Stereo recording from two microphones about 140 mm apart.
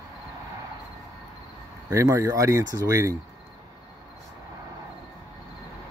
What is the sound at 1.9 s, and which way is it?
Speech, 20° right (ahead or behind).